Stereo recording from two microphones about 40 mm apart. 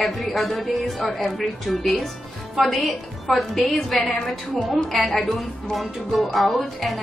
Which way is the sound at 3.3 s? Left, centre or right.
Centre.